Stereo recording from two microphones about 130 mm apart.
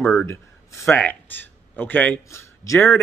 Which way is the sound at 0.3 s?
20° left (ahead or behind).